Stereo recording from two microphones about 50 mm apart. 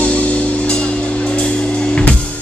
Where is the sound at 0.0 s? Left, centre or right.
Left.